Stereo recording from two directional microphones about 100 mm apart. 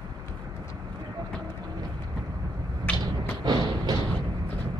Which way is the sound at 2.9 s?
15° left (ahead or behind).